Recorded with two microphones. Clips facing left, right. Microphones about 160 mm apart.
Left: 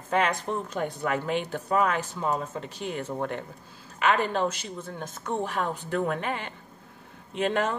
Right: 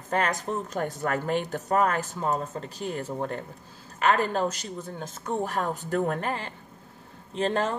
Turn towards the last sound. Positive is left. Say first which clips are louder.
# even
turn(degrees=-30)  # may be behind; listen again after turning